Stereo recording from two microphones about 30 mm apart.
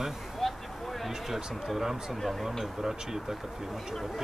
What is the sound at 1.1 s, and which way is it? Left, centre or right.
Speech, centre.